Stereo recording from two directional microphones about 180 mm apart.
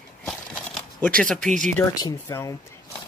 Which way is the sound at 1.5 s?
45° right (ahead or behind).